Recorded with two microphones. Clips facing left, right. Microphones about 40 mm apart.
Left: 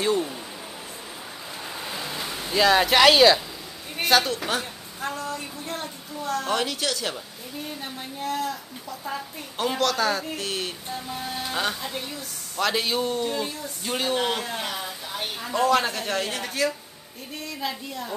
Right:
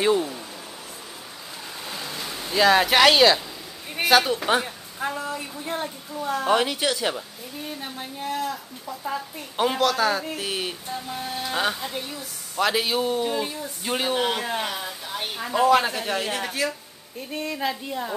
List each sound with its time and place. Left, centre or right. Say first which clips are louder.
1.9 s a sound: even; centre
4.5 s speech: right 5 dB; centre
17.3 s a woman's voice: right 4 dB; right